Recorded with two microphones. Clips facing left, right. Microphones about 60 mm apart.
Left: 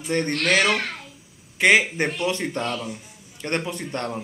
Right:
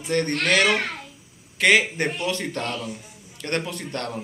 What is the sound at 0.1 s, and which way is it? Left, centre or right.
Speech, left.